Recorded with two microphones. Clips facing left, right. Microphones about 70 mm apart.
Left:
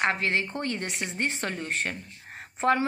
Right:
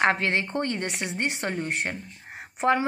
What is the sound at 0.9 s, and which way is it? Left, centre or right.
A woman's voice, right.